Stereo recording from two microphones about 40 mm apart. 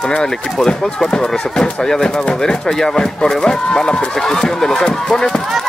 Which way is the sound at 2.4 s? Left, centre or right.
Centre.